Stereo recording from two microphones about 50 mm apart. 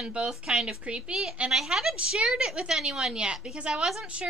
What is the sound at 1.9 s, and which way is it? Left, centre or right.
A woman's voice, centre.